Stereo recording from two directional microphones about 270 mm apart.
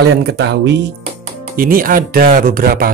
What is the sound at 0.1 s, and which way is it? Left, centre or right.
Speech, right.